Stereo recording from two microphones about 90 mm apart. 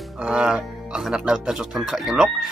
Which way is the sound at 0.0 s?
5° right (ahead or behind).